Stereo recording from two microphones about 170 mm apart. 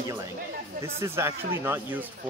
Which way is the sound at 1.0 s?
15° right (ahead or behind).